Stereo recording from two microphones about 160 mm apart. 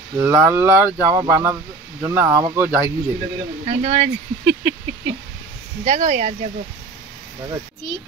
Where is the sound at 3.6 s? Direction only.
40° right (ahead or behind).